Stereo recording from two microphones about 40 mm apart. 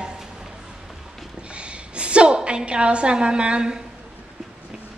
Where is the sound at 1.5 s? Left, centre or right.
Right.